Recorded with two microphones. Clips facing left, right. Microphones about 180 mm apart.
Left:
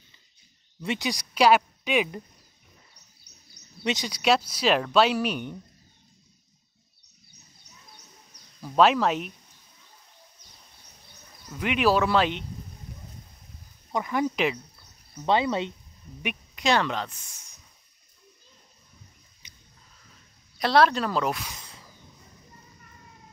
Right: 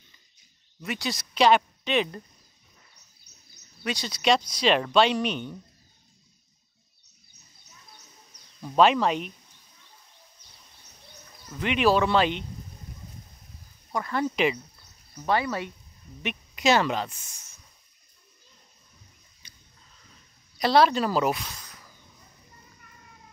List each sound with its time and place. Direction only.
0.8 s speech: 15° left (ahead or behind)
3.8 s speech: 15° left (ahead or behind)
8.5 s speech: centre (ahead or behind)
11.6 s speech: 5° left (ahead or behind)
13.9 s speech: 15° left (ahead or behind)
14.3 s speech: centre (ahead or behind)
15.2 s speech: 20° left (ahead or behind)
16.5 s speech: 5° right (ahead or behind)
19.4 s a sound: 20° left (ahead or behind)
20.5 s speech: centre (ahead or behind)
21.5 s a sound: 25° left (ahead or behind)